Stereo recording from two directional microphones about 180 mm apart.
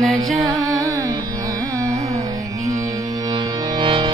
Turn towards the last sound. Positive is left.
turn(degrees=-30)  # may be behind; listen again after turning